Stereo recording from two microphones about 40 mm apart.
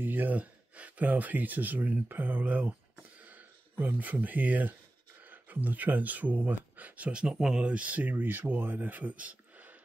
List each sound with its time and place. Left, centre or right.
0.0 s speech: right
7.1 s speech: right
7.6 s speech: right